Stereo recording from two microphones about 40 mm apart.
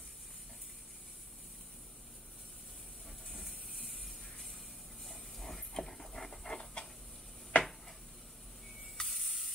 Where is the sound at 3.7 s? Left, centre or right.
Centre.